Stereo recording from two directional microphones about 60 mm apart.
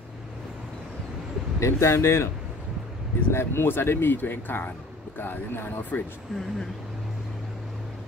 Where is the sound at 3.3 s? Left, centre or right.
Left.